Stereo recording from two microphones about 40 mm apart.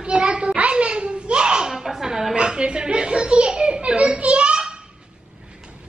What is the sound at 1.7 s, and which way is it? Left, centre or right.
Speech, centre.